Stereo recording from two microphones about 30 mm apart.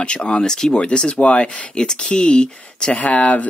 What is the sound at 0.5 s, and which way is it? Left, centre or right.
Speech, centre.